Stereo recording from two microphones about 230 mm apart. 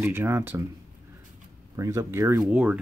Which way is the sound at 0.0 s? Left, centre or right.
Centre.